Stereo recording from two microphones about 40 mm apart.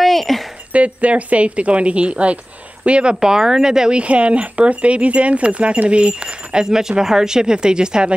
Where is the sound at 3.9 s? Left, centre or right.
Right.